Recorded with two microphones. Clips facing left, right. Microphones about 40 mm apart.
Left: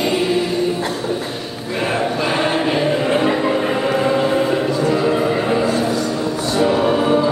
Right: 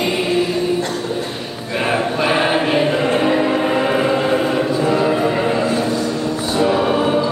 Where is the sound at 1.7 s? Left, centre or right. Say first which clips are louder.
Right 1 dB; centre.